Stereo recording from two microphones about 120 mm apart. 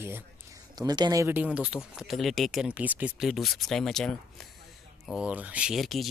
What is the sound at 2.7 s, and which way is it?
Speech, 10° right (ahead or behind).